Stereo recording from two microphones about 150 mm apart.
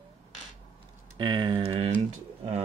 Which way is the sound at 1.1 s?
30° right (ahead or behind).